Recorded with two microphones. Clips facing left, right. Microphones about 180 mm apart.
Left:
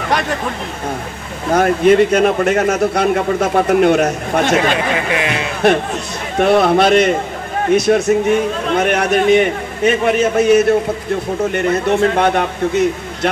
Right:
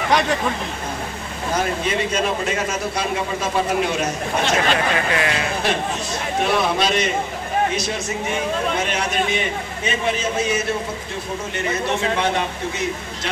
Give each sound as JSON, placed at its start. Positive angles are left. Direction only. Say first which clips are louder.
{"t": 1.5, "sound": "a man's voice", "louder": "left 11 dB", "side_deg": 60}
{"t": 4.9, "sound": "speech", "louder": "left 3 dB", "side_deg": 20}
{"t": 5.6, "sound": "a man's voice", "louder": "left 8 dB", "side_deg": 55}